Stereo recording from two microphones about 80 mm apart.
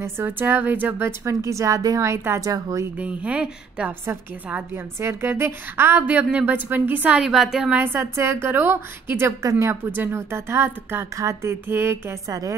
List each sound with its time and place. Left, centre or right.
0.0 s a woman's voice: right
1.4 s a woman's voice: right
3.0 s a woman's voice: centre
7.2 s a woman's voice: centre
7.7 s a woman's voice: right
9.4 s speech: right
9.8 s a woman's voice: right
11.1 s speech: right
12.3 s a woman's voice: right